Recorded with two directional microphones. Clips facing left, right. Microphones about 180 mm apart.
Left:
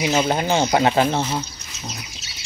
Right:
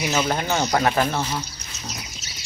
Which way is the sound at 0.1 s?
25° left (ahead or behind).